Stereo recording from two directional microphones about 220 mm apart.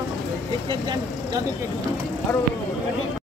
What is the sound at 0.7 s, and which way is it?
Speech, 20° right (ahead or behind).